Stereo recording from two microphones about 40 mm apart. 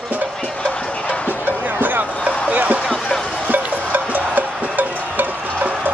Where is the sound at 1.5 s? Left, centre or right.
Right.